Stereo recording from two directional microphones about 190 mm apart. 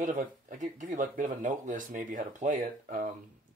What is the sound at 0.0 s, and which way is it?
Speech, 45° right (ahead or behind).